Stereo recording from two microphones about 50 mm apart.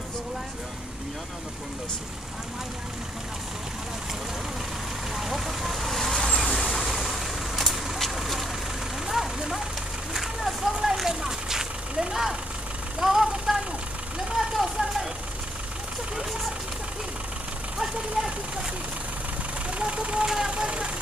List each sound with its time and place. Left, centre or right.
5.1 s vehicle: centre
6.5 s vehicle: centre
10.1 s a sound: centre
11.1 s vehicle: centre
18.2 s vehicle: centre
19.8 s vehicle: right